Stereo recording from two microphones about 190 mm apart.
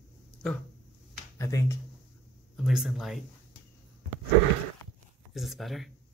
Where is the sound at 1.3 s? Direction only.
15° left (ahead or behind).